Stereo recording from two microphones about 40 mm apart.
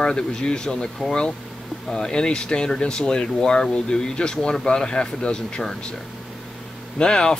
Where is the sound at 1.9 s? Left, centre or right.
Centre.